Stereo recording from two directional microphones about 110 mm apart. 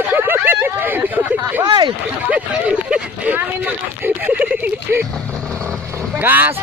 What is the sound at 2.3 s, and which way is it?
Speech, 10° right (ahead or behind).